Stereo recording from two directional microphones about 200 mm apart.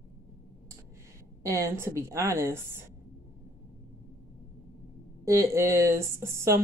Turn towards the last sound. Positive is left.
turn(degrees=-15)  # may be behind; listen again after turning